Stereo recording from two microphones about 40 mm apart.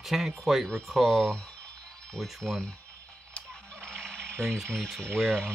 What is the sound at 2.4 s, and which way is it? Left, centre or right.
Speech, centre.